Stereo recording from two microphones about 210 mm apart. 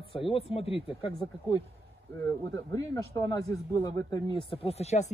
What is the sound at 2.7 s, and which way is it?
Speech, 15° left (ahead or behind).